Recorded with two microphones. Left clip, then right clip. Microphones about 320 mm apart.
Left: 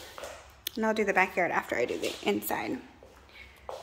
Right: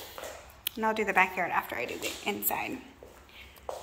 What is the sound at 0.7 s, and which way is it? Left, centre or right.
Speech, centre.